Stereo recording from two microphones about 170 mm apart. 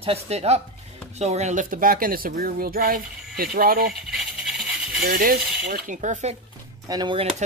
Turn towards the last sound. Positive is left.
turn(degrees=-25)  # may be behind; listen again after turning